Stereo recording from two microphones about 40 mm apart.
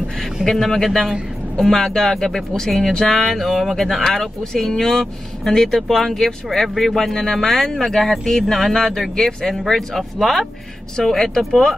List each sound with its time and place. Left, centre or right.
0.5 s speech: centre